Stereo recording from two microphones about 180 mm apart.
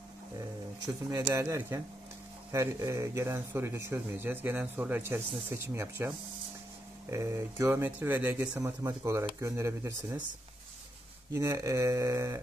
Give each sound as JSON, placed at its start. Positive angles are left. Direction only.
{"t": 0.8, "sound": "speech", "side_deg": -15}
{"t": 11.3, "sound": "speech", "side_deg": -15}